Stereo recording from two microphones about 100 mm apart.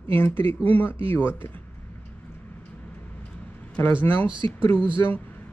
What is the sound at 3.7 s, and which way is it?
Speech, 20° left (ahead or behind).